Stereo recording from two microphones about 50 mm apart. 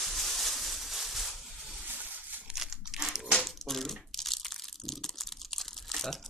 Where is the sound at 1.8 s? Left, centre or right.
Right.